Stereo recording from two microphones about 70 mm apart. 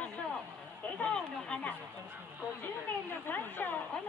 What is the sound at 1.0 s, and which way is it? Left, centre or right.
Speech, centre.